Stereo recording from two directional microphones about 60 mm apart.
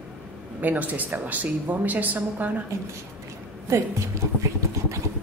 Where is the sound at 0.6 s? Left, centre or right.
Right.